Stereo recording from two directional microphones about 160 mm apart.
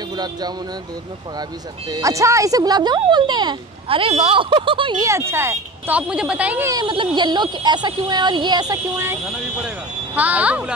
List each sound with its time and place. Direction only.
0.1 s speech: 25° right (ahead or behind)
1.9 s speech: 20° right (ahead or behind)
5.0 s speech: 15° right (ahead or behind)
6.7 s speech: 30° right (ahead or behind); by 10.7 s 10° right (ahead or behind)